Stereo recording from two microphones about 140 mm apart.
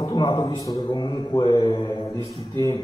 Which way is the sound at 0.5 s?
25° left (ahead or behind).